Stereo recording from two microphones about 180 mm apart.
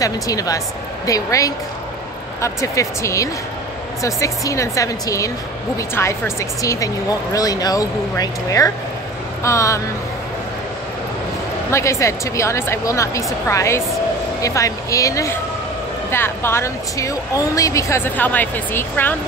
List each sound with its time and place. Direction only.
0.0 s a woman's voice: 20° left (ahead or behind)
11.7 s speech: 15° left (ahead or behind)